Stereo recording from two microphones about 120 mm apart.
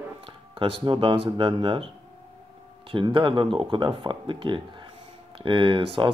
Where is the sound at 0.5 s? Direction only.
45° right (ahead or behind).